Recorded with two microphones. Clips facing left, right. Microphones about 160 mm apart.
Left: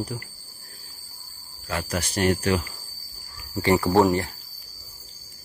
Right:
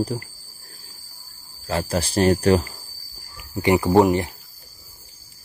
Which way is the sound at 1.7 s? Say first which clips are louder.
Right 5 dB; 30° right (ahead or behind).